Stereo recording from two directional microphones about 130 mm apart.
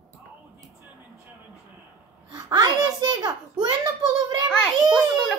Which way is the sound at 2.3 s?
30° right (ahead or behind).